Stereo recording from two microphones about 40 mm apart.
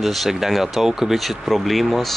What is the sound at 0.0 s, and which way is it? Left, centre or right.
Speech, centre.